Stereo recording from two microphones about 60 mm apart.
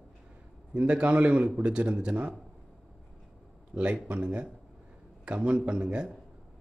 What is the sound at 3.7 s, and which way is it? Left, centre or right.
A man's voice, centre.